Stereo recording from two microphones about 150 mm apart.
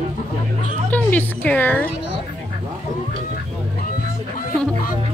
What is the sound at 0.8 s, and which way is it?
Speech, 10° left (ahead or behind).